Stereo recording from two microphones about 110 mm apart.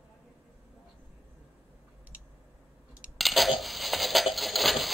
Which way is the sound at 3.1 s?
Centre (ahead or behind).